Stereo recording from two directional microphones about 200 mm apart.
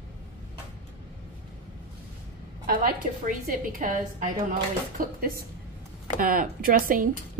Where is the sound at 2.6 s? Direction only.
45° right (ahead or behind).